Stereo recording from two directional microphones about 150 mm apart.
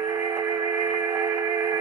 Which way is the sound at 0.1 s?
20° right (ahead or behind).